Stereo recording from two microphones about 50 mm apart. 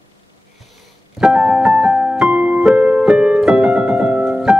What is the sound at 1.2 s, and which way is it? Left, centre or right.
Keyboard, centre.